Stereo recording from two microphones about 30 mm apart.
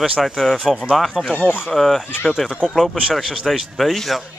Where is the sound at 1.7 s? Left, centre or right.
Centre.